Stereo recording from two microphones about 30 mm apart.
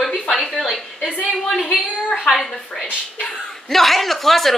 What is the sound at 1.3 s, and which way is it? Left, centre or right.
A woman's voice, centre.